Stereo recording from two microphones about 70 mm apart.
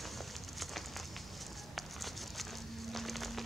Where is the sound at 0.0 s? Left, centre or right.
Centre.